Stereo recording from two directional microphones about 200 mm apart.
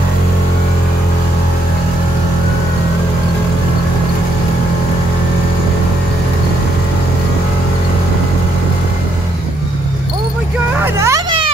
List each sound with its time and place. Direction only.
11.0 s children playing: 15° right (ahead or behind)